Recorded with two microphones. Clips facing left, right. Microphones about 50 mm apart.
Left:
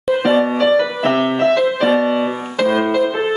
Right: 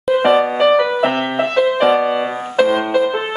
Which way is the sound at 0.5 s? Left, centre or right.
Centre.